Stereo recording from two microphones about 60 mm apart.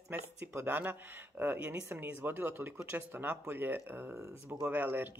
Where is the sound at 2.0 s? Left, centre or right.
Right.